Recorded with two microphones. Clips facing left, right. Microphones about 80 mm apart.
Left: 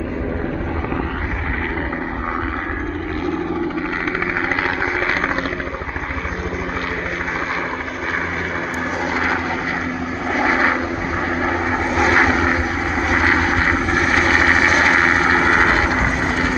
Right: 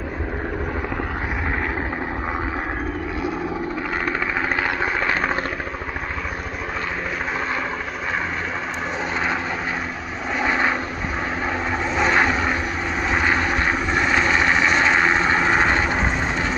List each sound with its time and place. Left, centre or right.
10.3 s vehicle: centre